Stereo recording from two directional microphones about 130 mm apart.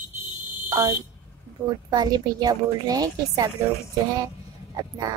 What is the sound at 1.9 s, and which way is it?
A woman's voice, 30° right (ahead or behind).